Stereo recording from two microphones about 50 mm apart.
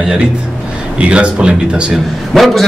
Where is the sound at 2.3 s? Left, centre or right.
Centre.